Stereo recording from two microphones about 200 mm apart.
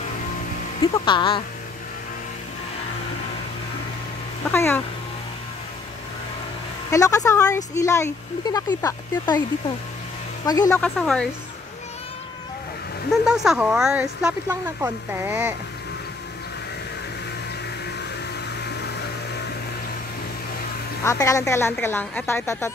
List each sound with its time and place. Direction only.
0.9 s speech: 25° left (ahead or behind)
4.5 s speech: 10° left (ahead or behind)
6.9 s speech: 15° left (ahead or behind)
10.4 s speech: 20° left (ahead or behind)
10.8 s speech: 5° left (ahead or behind)
13.1 s speech: centre (ahead or behind)
21.0 s speech: 15° left (ahead or behind)